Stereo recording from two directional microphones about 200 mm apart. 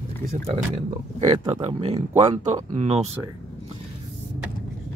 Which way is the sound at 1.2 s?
25° right (ahead or behind).